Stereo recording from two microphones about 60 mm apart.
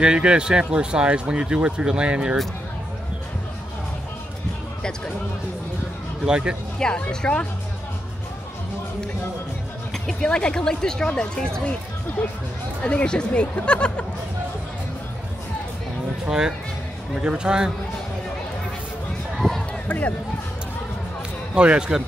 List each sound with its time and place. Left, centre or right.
0.0 s speech: centre
6.2 s speech: centre
6.8 s speech: centre
10.0 s speech: centre
16.3 s speech: centre
19.3 s a sound: centre
19.9 s speech: left
21.5 s speech: centre